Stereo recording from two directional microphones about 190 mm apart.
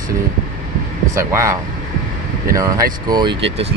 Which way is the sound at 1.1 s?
15° right (ahead or behind).